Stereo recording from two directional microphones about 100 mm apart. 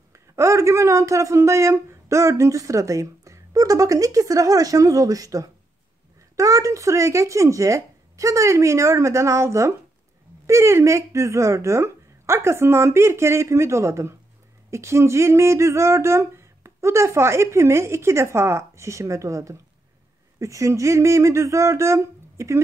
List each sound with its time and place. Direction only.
0.1 s speech: 30° right (ahead or behind)